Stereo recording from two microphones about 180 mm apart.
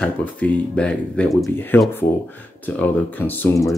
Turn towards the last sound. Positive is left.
turn(degrees=10)  # may be behind; listen again after turning